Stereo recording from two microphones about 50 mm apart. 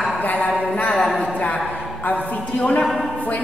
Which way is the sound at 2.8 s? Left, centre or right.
Centre.